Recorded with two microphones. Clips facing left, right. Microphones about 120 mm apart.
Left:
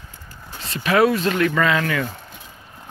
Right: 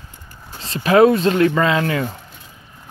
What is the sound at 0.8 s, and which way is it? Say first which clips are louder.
Speech: right 5 dB; 30° right (ahead or behind).